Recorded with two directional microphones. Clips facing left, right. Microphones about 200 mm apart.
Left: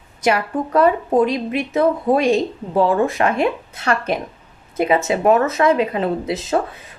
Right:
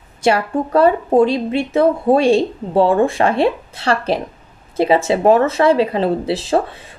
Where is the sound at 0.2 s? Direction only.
30° right (ahead or behind).